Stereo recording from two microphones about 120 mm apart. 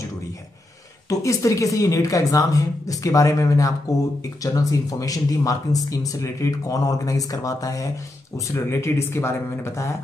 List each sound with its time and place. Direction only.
1.0 s speech: 25° left (ahead or behind)